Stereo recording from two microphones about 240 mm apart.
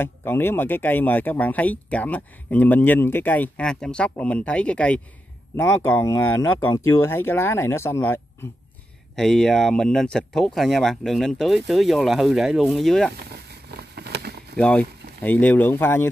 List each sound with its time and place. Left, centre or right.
0.0 s speech: centre
13.3 s a sound: right
14.6 s speech: centre